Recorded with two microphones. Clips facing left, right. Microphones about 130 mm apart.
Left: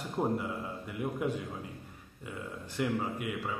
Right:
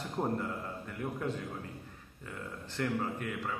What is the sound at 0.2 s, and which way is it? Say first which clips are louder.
A man's voice: left 2 dB; 10° left (ahead or behind).